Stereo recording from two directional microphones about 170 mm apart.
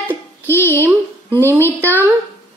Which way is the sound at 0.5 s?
10° left (ahead or behind).